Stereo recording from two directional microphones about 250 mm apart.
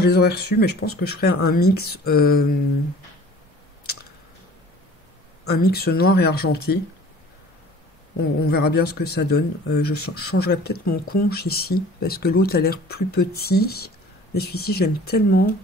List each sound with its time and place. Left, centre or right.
0.0 s speech: left
5.5 s speech: left
8.2 s speech: left